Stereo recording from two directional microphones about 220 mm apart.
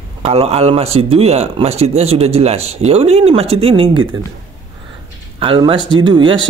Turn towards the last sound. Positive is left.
turn(degrees=-20)  # may be behind; listen again after turning